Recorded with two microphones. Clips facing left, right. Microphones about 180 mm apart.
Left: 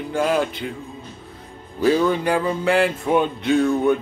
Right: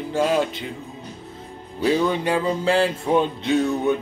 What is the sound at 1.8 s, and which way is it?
Music, 20° right (ahead or behind).